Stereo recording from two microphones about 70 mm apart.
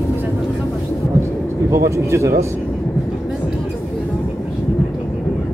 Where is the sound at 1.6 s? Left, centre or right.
Right.